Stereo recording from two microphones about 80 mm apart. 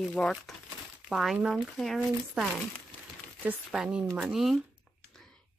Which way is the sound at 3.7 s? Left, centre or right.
Centre.